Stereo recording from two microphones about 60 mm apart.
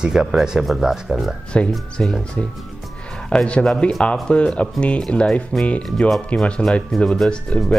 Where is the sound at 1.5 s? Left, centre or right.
Centre.